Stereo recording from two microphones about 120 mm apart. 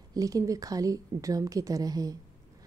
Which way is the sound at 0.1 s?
30° right (ahead or behind).